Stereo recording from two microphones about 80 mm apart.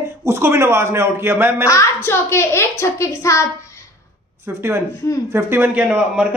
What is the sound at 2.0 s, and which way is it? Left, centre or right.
A woman's voice, left.